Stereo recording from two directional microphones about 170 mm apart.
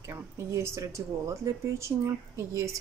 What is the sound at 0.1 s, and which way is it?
Speech, 15° right (ahead or behind).